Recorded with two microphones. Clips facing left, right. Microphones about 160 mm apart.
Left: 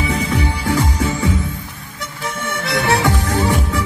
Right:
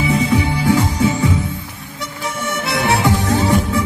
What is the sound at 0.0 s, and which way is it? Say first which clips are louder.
Music: right 3 dB; 30° right (ahead or behind).